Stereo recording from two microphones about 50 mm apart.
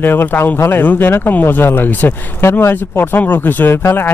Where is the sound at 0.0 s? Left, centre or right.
Left.